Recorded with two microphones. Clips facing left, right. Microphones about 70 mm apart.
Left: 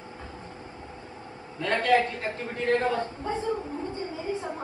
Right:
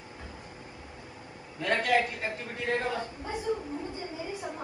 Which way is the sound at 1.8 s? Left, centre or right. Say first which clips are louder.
Left 5 dB; left.